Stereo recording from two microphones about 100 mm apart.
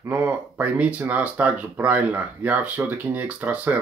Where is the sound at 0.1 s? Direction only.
20° right (ahead or behind).